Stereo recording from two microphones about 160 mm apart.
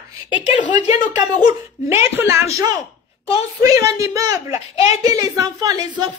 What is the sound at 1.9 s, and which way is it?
A woman's voice, 15° right (ahead or behind).